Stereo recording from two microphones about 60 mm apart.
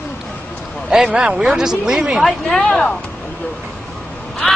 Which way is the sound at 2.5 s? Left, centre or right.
Left.